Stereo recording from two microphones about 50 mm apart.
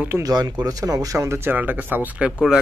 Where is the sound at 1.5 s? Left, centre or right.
Right.